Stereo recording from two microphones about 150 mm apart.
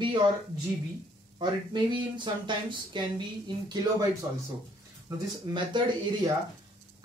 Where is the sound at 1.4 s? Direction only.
30° right (ahead or behind).